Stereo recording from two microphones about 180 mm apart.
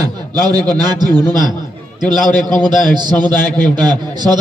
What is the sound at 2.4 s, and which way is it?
A man's voice, 25° right (ahead or behind).